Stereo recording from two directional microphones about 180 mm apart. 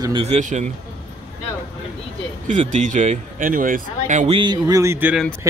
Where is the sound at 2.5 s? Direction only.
40° right (ahead or behind).